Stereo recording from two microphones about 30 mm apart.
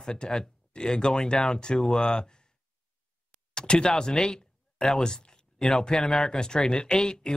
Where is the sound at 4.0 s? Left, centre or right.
Left.